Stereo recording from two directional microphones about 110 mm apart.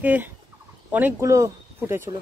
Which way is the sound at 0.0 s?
15° right (ahead or behind).